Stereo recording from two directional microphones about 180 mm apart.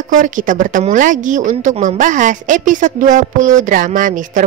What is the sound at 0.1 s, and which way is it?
A woman's voice, 45° right (ahead or behind).